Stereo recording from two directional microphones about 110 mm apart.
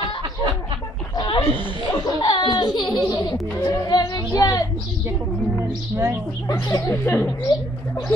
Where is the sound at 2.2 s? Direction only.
45° left (ahead or behind).